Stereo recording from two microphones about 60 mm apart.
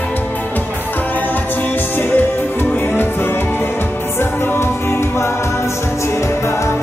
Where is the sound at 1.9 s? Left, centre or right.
Left.